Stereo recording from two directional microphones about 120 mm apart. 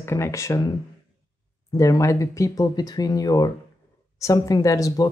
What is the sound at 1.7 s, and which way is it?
Speech, 30° left (ahead or behind).